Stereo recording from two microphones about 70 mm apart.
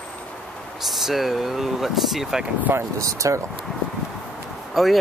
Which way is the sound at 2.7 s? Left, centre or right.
Right.